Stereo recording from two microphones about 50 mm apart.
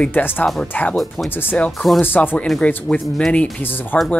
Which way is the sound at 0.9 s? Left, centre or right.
Centre.